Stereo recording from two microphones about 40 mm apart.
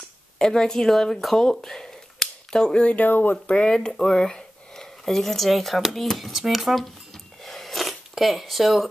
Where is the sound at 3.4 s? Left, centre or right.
Left; by 6.9 s centre.